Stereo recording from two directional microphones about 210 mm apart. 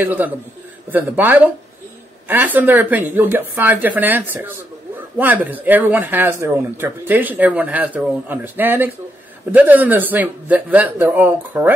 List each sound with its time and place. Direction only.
0.0 s speech: 10° right (ahead or behind)